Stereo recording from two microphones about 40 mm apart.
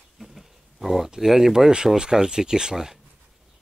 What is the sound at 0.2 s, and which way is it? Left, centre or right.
Speech, centre.